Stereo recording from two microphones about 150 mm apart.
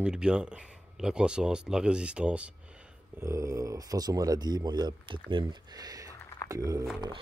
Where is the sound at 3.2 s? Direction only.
20° right (ahead or behind).